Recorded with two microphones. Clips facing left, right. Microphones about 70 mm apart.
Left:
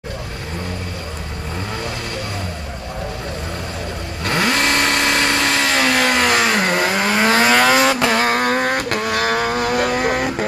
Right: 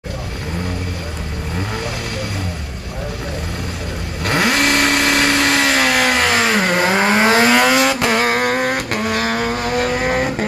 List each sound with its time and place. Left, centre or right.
4.2 s vehicle: centre
5.2 s chainsaw: right
5.7 s vehicle: centre
6.9 s vehicle: right
7.4 s vehicle: centre
9.5 s vehicle: centre
9.9 s vehicle: centre